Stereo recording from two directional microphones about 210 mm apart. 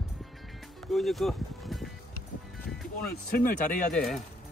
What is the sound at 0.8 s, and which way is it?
Speech, centre (ahead or behind).